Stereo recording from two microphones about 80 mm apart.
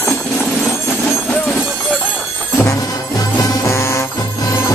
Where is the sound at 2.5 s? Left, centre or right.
Left.